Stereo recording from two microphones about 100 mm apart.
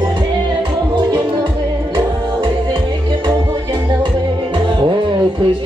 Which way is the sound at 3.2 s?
50° right (ahead or behind).